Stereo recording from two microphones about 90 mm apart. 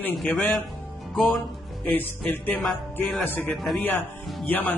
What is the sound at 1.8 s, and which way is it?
Speech, 20° left (ahead or behind).